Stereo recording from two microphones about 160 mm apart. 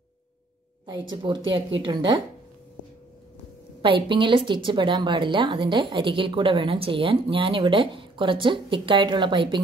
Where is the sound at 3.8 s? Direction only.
30° right (ahead or behind).